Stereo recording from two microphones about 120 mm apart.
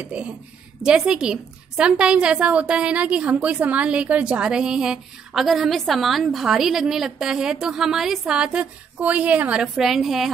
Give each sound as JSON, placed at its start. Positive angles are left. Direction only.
{"t": 0.0, "sound": "a woman's voice", "side_deg": -10}